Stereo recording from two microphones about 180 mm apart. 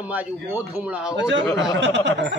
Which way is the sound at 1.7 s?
85° right.